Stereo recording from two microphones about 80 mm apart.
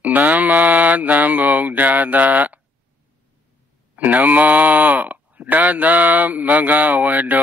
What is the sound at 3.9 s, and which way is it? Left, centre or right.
Speech, centre.